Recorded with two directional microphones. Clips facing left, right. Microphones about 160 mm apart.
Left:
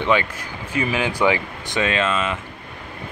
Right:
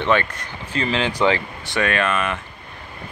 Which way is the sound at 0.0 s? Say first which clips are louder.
Even; 15° left (ahead or behind).